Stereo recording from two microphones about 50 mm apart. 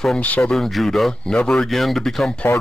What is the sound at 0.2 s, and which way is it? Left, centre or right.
Speech, left.